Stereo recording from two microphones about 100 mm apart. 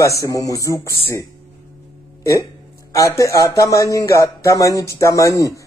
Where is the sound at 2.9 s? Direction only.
30° left (ahead or behind).